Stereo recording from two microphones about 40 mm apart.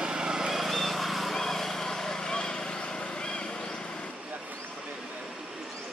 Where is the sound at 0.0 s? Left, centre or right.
Centre.